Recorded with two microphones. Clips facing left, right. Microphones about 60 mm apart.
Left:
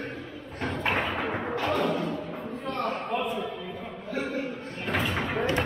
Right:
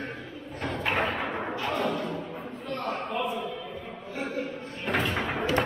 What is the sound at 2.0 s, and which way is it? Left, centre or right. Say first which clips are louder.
Music: left 2 dB; centre.